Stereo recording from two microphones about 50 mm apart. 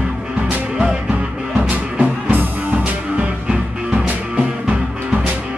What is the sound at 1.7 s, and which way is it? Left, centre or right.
Music, right.